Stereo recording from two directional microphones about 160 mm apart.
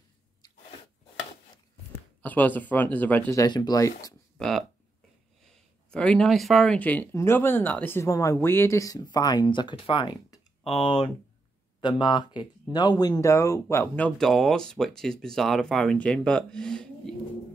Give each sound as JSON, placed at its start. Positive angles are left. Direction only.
{"t": 1.9, "sound": "speech", "side_deg": 10}
{"t": 4.4, "sound": "speech", "side_deg": 0}
{"t": 5.9, "sound": "speech", "side_deg": 5}